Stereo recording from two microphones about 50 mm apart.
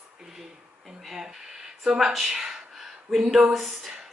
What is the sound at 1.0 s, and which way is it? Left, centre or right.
A woman's voice, centre.